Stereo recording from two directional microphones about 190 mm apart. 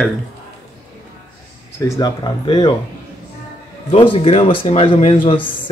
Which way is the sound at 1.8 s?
20° left (ahead or behind).